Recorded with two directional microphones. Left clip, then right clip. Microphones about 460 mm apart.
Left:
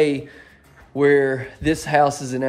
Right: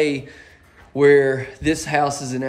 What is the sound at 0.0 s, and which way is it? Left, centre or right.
Speech, centre.